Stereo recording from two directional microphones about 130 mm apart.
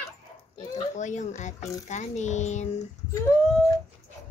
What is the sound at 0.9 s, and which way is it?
A child's voice, 65° left (ahead or behind).